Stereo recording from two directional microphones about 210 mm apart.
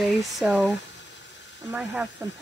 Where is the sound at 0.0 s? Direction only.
Centre (ahead or behind).